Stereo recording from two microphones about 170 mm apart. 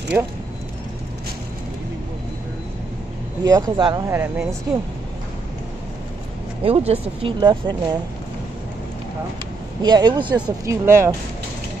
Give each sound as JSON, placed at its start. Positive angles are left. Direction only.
{"t": 0.1, "sound": "speech", "side_deg": -10}
{"t": 3.4, "sound": "speech", "side_deg": -25}
{"t": 4.1, "sound": "speech", "side_deg": -15}
{"t": 6.6, "sound": "speech", "side_deg": -35}
{"t": 9.8, "sound": "speech", "side_deg": -25}
{"t": 10.3, "sound": "speech", "side_deg": -15}